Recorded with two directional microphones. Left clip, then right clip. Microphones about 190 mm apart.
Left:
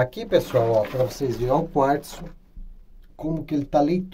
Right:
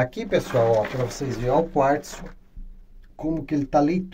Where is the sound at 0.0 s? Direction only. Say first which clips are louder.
Left 2 dB; 5° left (ahead or behind).